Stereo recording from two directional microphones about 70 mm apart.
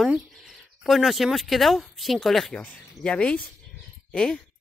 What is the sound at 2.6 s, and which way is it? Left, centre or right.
Speech, centre.